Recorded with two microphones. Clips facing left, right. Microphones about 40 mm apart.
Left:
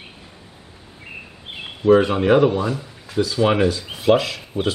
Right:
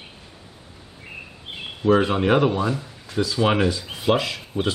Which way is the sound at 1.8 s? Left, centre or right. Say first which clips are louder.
Left 4 dB; centre.